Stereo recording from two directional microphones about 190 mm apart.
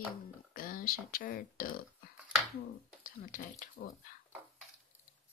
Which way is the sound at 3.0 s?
45° left (ahead or behind).